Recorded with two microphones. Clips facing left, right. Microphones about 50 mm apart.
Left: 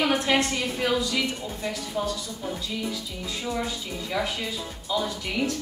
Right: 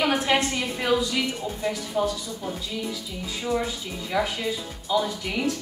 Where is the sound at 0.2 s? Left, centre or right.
Centre.